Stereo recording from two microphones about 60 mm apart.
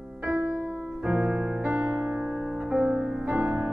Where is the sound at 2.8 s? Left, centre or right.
Right.